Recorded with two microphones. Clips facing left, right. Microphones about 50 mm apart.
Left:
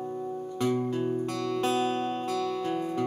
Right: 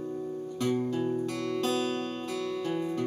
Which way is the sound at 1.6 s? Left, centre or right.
Centre.